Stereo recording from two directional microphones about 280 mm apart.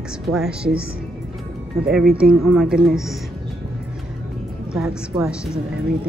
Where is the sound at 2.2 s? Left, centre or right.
Centre.